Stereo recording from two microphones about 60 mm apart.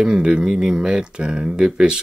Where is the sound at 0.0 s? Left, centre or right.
Centre.